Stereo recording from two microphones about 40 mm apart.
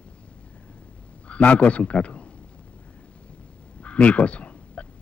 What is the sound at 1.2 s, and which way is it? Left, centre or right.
A man's voice, left.